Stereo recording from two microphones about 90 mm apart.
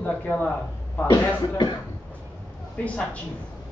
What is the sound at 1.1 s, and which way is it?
Speech, 55° left (ahead or behind).